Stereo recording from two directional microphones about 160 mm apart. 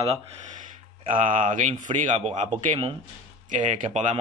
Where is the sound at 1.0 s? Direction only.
55° right (ahead or behind).